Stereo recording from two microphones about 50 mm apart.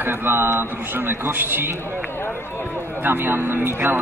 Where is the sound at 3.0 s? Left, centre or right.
Right.